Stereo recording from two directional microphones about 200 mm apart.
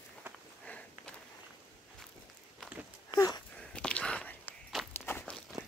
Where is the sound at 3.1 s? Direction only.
20° left (ahead or behind).